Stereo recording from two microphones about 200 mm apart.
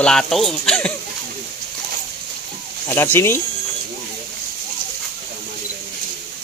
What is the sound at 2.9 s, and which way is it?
Speech, 10° left (ahead or behind).